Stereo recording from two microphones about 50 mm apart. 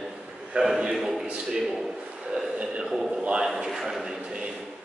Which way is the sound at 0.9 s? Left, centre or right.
Centre.